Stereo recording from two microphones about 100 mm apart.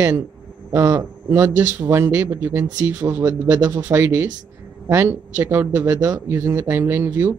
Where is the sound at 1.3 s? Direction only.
20° right (ahead or behind).